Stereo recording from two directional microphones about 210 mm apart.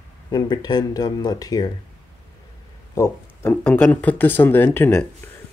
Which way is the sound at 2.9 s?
15° left (ahead or behind).